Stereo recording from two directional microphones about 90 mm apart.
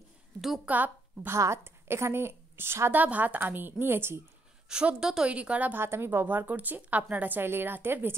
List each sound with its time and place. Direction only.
0.7 s a woman's voice: 20° right (ahead or behind)
1.3 s a woman's voice: 30° right (ahead or behind)
4.6 s a woman's voice: 10° right (ahead or behind)